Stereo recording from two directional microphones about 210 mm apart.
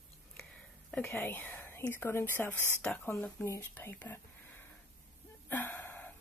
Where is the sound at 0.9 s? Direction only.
10° left (ahead or behind).